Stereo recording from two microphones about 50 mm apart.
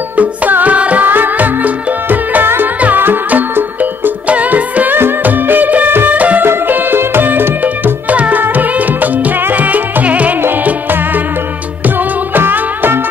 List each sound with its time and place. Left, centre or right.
0.1 s music: right
4.3 s music: right
6.4 s music: right
10.4 s music: right